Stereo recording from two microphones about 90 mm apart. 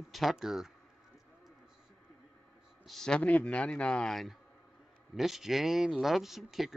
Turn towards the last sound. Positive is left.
turn(degrees=0)  # may be behind; listen again after turning